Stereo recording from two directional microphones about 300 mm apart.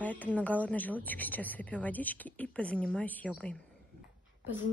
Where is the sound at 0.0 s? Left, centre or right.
Centre.